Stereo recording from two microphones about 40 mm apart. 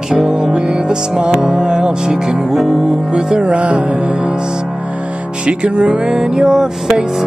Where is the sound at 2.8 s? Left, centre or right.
Centre.